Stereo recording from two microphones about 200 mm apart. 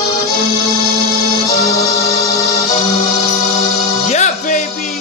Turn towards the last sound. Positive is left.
turn(degrees=35)  # may be behind; listen again after turning